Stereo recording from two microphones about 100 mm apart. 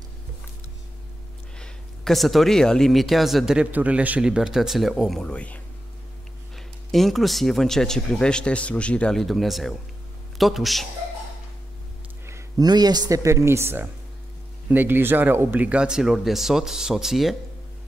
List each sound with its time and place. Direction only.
1.6 s speech: centre (ahead or behind)
3.7 s speech: 15° right (ahead or behind)
5.2 s speech: 10° left (ahead or behind)
6.5 s speech: centre (ahead or behind)
12.3 s a sound: 30° right (ahead or behind)
12.6 s speech: 45° right (ahead or behind); by 17.4 s 5° right (ahead or behind)